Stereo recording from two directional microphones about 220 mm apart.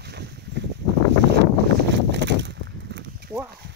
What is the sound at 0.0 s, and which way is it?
Boat, 50° right (ahead or behind).